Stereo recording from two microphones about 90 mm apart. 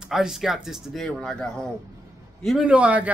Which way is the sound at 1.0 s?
10° left (ahead or behind).